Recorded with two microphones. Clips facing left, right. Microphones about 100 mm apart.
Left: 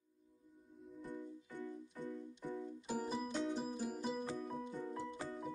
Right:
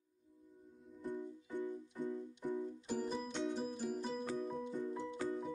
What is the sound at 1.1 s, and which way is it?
Music, 15° right (ahead or behind).